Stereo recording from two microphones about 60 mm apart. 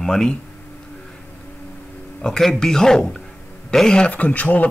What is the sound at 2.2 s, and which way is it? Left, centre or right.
Speech, centre.